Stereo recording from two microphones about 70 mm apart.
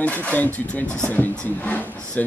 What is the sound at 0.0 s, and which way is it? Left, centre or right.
Speech, left.